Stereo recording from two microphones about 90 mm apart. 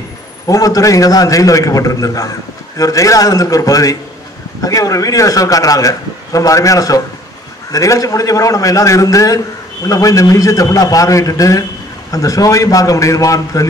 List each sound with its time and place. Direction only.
0.5 s a man's voice: 40° left (ahead or behind)